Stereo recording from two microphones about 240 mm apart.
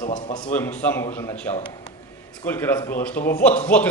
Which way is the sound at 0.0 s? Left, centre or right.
Centre.